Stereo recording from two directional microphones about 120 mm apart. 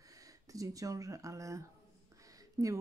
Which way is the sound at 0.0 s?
30° right (ahead or behind).